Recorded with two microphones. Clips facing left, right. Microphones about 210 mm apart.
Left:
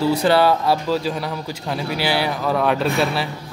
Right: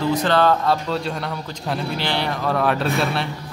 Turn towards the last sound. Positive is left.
turn(degrees=0)  # may be behind; listen again after turning